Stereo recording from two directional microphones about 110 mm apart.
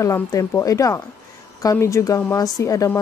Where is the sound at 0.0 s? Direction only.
30° left (ahead or behind).